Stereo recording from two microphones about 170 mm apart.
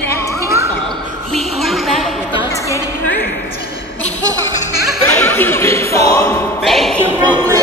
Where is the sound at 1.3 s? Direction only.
Centre (ahead or behind).